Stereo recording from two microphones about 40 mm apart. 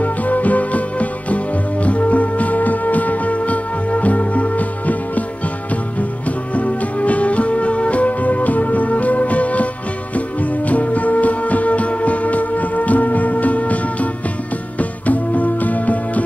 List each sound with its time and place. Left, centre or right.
0.0 s music: left